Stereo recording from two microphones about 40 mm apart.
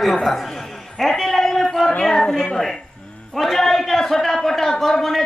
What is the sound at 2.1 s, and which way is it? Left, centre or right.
A man's voice, centre.